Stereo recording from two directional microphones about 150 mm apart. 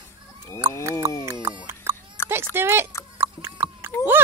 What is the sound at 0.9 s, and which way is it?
Speech, 20° right (ahead or behind).